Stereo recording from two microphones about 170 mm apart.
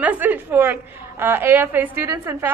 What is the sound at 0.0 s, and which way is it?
A woman's voice, 10° right (ahead or behind).